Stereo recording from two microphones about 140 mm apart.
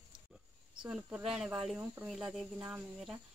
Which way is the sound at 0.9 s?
5° right (ahead or behind).